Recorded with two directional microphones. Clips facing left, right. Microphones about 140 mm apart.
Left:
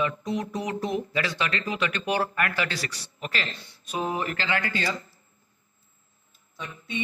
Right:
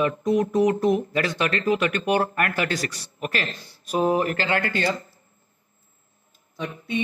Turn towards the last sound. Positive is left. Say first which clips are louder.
# right 7 dB
turn(degrees=-50)  # may be behind; listen again after turning